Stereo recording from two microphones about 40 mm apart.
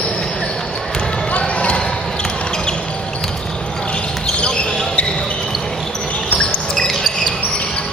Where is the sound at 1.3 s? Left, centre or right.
Left.